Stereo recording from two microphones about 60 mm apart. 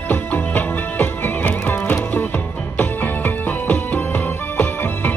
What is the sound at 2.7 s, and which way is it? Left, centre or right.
Music, left.